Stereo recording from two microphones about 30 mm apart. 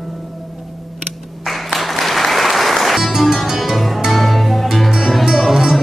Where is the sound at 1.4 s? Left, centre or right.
Centre.